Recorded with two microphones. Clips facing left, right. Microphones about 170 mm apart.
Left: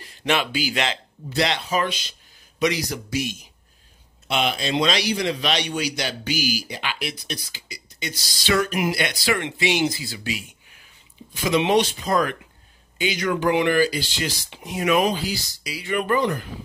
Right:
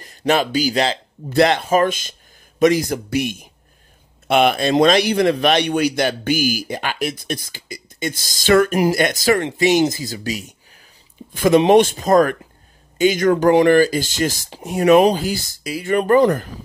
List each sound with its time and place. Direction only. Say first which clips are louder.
0.0 s speech: right 6 dB; 40° right (ahead or behind)
1.3 s a man's voice: right 8 dB; 50° right (ahead or behind)
15.2 s a man's voice: right 6 dB; 50° right (ahead or behind)